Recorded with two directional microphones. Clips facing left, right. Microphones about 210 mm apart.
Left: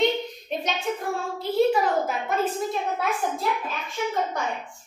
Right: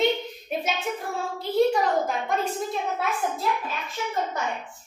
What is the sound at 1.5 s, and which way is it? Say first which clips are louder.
Speech: even; 5° left (ahead or behind).